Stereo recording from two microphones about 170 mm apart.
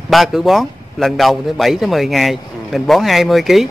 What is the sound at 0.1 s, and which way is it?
Speech, centre (ahead or behind).